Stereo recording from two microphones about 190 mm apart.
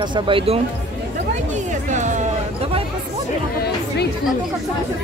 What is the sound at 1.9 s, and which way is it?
Music, 40° right (ahead or behind).